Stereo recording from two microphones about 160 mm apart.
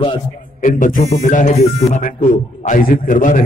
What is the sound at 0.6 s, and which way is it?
Speech, 55° left (ahead or behind).